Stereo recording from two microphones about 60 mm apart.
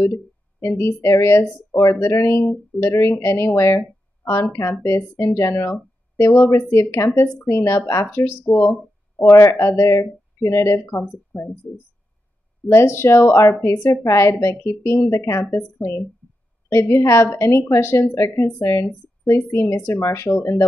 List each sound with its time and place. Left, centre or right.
0.0 s a woman's voice: left
12.6 s a woman's voice: left
13.5 s speech: left
14.0 s a woman's voice: left
16.6 s a sound: left
17.0 s a woman's voice: left